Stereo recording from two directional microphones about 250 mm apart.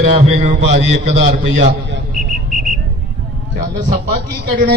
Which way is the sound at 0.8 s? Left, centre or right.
Right.